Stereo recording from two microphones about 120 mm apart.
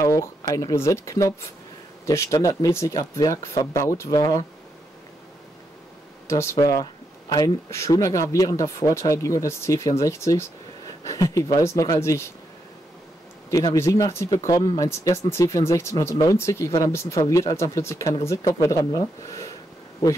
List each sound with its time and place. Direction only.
0.0 s speech: 25° left (ahead or behind)
6.2 s speech: 25° left (ahead or behind)
13.5 s speech: 30° left (ahead or behind)